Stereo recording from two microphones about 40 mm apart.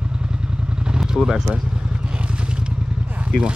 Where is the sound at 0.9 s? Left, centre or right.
Centre.